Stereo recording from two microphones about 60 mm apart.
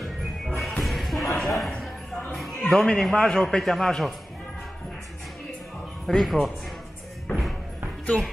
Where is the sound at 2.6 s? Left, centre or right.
Centre.